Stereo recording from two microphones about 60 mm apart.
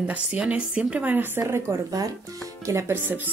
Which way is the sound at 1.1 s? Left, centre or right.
Right.